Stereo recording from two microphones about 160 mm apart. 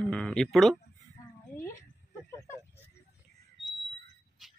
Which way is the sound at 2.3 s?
20° left (ahead or behind).